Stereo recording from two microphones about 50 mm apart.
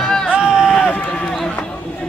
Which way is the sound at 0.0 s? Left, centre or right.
Centre.